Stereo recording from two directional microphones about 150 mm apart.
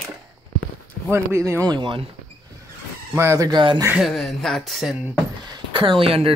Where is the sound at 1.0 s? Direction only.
20° right (ahead or behind); by 2.1 s 35° right (ahead or behind).